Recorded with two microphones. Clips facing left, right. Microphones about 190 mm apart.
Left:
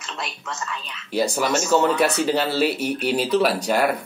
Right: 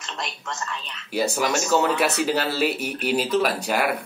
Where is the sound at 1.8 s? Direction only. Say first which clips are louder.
Left 2 dB; 5° right (ahead or behind).